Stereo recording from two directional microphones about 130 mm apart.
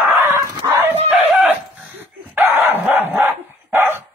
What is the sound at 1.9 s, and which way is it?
Dog, 15° right (ahead or behind).